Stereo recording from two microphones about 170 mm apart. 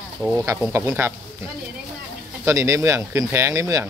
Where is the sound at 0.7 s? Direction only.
15° right (ahead or behind).